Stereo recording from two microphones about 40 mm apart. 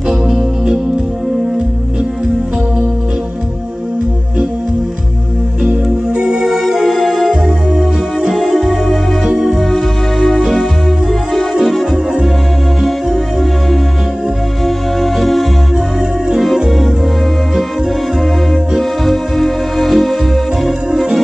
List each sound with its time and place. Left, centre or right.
0.1 s music: centre
5.9 s music: centre
6.4 s music: centre
7.2 s music: centre
9.2 s music: centre
9.6 s music: centre
15.0 s music: centre
18.8 s music: centre